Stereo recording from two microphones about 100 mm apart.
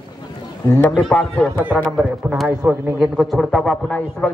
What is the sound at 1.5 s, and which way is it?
Speech, 15° right (ahead or behind).